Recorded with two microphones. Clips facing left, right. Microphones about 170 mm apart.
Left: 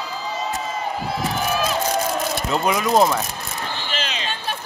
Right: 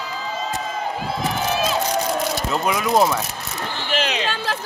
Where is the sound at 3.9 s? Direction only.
65° right (ahead or behind).